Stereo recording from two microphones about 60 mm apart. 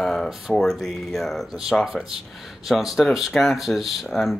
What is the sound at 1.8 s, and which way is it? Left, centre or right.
Speech, centre.